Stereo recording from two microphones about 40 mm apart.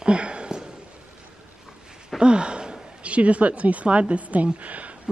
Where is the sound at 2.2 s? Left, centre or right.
Right.